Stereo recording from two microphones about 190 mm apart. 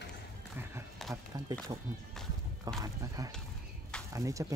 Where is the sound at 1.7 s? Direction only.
20° right (ahead or behind).